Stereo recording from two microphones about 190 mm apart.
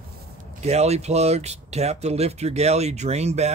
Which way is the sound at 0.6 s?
35° right (ahead or behind).